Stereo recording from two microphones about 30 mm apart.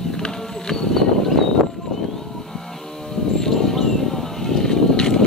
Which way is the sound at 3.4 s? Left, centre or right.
Centre.